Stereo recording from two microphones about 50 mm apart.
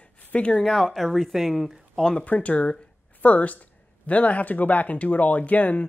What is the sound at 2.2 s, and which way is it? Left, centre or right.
A woman's voice, left.